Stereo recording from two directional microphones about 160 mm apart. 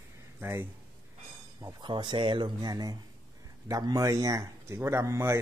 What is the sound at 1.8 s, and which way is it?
Speech, 30° right (ahead or behind).